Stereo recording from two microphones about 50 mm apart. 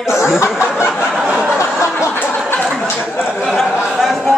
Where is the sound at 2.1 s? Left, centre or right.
Left.